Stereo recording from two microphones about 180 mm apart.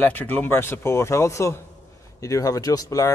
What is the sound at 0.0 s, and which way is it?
Speech, 10° left (ahead or behind).